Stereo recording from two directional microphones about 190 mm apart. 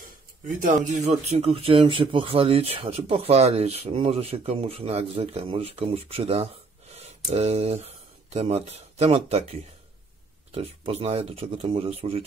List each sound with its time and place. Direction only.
0.5 s speech: 45° right (ahead or behind)